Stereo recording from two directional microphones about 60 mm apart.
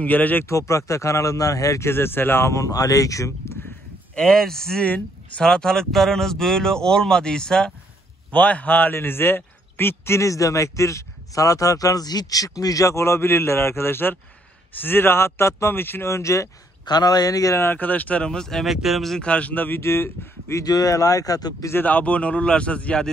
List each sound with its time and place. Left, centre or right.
0.0 s a man's voice: left
0.5 s speech: left
1.9 s speech: left
2.5 s speech: left
4.1 s speech: centre
8.3 s a man's voice: left
16.1 s speech: left
17.0 s speech: left
17.7 s a man's voice: left; by 18.7 s centre
18.7 s speech: centre
19.2 s a man's voice: left
19.8 s a man's voice: left
20.6 s speech: left
21.7 s a man's voice: left